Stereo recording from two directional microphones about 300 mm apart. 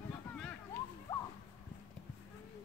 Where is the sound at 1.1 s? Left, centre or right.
Centre.